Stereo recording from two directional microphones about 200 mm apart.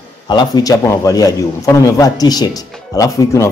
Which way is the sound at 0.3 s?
20° left (ahead or behind).